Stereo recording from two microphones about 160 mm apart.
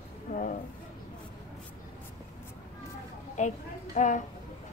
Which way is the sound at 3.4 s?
50° left (ahead or behind).